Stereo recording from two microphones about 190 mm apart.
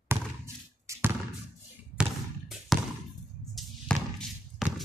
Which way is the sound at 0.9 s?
15° right (ahead or behind).